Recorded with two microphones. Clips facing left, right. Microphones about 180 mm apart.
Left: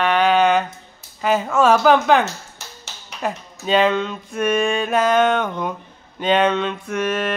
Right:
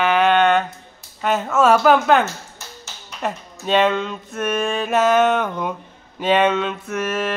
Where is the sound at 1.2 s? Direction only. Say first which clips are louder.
Even; centre (ahead or behind).